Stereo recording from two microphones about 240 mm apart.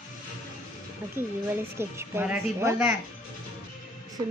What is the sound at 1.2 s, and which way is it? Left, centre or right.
Speech, centre.